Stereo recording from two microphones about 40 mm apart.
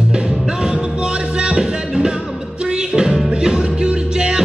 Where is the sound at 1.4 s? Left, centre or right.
Right.